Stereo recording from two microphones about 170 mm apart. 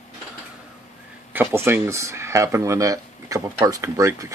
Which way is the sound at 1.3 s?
15° right (ahead or behind).